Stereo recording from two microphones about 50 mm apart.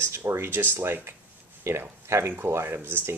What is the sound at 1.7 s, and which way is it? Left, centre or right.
Speech, right.